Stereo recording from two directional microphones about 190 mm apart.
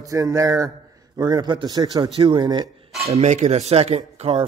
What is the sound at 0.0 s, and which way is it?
A man's voice, 15° right (ahead or behind).